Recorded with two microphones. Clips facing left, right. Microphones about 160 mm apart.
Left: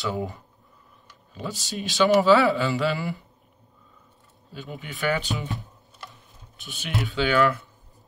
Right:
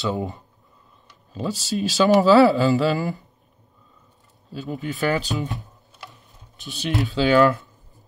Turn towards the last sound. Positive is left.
turn(degrees=-35)  # may be behind; listen again after turning